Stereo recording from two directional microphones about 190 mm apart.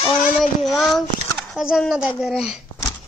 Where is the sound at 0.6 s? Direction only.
Centre (ahead or behind).